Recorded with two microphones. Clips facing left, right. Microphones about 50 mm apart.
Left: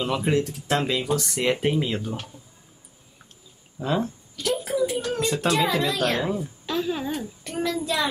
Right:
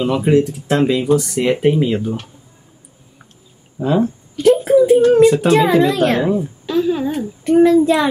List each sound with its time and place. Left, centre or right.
0.0 s speech: centre
3.8 s speech: centre
4.4 s a sound: right
5.7 s a child's voice: right
6.2 s speech: centre
6.6 s a sound: centre
7.4 s a child's voice: right